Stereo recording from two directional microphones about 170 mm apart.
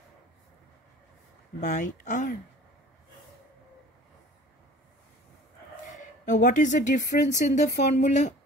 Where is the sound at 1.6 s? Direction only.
45° left (ahead or behind).